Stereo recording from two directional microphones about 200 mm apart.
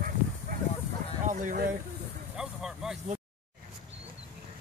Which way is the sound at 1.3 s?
40° right (ahead or behind).